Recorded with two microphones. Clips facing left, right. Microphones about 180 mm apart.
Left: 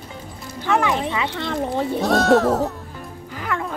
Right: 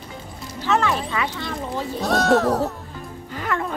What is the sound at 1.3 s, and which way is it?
Speech, 60° left (ahead or behind).